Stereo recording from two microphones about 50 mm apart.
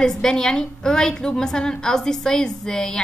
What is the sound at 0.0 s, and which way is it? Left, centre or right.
A woman's voice, centre.